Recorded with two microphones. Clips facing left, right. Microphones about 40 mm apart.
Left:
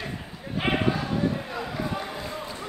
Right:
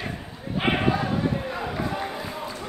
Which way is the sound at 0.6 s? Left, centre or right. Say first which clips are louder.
Right 2 dB; centre.